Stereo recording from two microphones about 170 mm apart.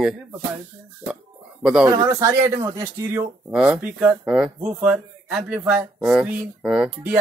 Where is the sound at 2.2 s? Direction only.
15° right (ahead or behind).